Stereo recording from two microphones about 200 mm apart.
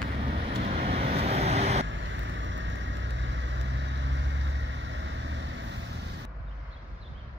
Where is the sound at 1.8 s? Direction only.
70° right (ahead or behind).